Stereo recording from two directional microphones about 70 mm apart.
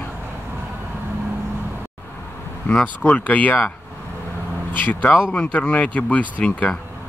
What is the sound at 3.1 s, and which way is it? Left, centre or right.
Speech, left.